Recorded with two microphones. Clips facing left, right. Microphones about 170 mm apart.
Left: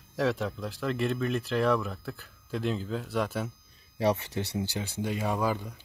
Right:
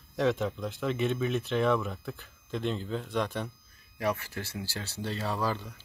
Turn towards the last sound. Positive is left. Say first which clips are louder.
# left 3 dB
turn(degrees=15)  # may be behind; listen again after turning